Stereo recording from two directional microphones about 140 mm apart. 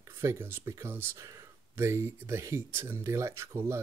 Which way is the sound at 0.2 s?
20° right (ahead or behind).